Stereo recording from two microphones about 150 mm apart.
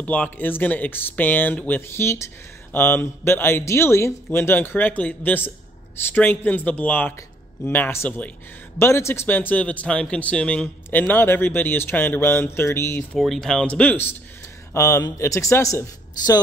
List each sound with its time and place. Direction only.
0.0 s speech: 10° left (ahead or behind)
13.2 s speech: centre (ahead or behind); by 16.3 s 20° left (ahead or behind)